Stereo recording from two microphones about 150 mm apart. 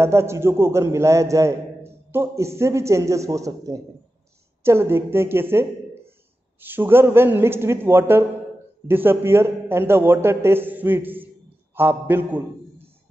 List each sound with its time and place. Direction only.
0.0 s a man's voice: 15° right (ahead or behind)